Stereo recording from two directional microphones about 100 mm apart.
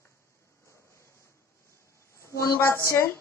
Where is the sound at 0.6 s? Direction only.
30° left (ahead or behind).